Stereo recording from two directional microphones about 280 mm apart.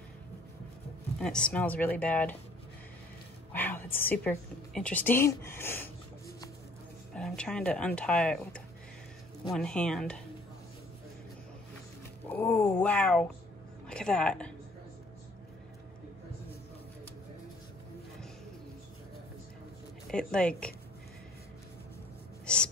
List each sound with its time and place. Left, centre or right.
1.2 s speech: centre
3.5 s a woman's voice: centre
7.2 s speech: centre
12.3 s speech: centre
20.1 s speech: centre
22.5 s gasp: centre